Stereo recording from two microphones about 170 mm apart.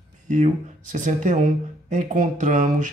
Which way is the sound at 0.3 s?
45° right (ahead or behind).